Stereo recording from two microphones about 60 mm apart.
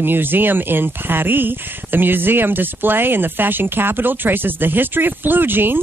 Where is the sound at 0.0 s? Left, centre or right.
Right.